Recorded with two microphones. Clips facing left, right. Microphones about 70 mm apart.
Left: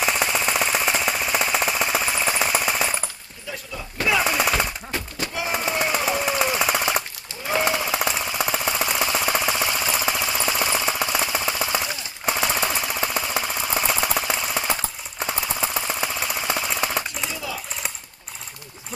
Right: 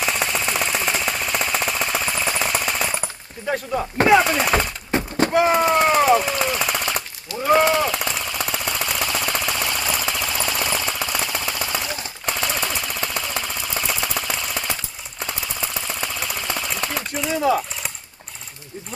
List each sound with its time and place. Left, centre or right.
0.0 s jackhammer: centre
3.4 s speech: right
4.2 s speech: centre
4.9 s a sound: right
6.1 s jackhammer: centre
17.3 s a sound: right